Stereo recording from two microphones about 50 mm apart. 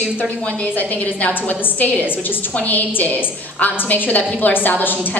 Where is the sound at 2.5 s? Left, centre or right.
Left.